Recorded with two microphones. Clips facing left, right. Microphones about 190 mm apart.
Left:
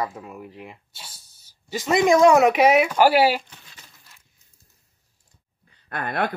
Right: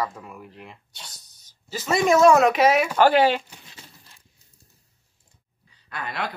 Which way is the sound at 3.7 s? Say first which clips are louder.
Right 4 dB; 35° right (ahead or behind).